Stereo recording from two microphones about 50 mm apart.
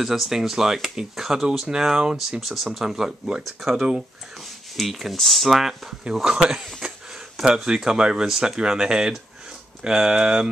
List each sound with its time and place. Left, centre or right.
0.0 s speech: centre
2.4 s speech: centre
3.4 s speech: centre
6.8 s a sound: centre
7.4 s speech: centre